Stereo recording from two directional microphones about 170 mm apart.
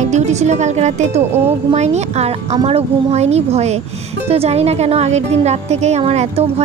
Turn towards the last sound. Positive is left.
turn(degrees=-35)  # may be behind; listen again after turning